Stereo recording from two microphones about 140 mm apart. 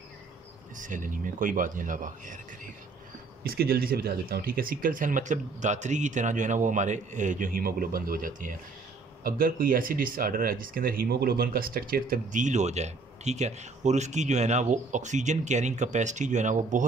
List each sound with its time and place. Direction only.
0.7 s speech: 70° right (ahead or behind)
3.4 s speech: 90° right; by 8.5 s 75° right (ahead or behind)
9.2 s speech: 90° right; by 16.8 s 65° right (ahead or behind)